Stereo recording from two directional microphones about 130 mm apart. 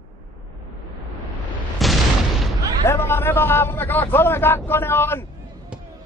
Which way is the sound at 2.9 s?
15° left (ahead or behind).